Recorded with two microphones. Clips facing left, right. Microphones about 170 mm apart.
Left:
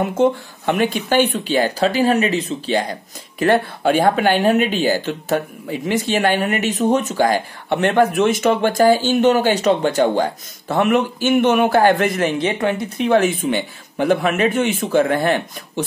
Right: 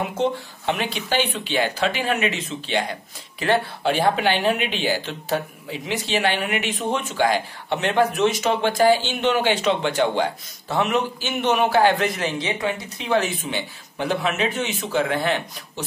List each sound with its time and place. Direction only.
0.2 s speech: 50° left (ahead or behind)